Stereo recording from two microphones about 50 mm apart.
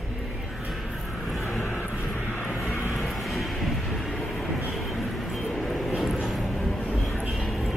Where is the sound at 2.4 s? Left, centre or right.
Centre.